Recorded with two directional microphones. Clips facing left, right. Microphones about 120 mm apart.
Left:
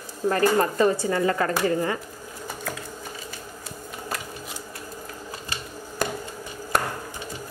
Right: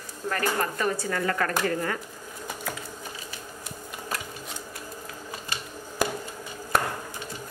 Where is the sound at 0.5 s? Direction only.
25° left (ahead or behind).